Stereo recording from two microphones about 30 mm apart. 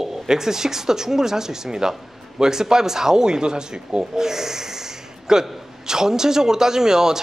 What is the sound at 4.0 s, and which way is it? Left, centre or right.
Snort, centre.